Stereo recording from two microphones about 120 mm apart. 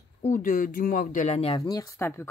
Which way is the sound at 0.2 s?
90° left.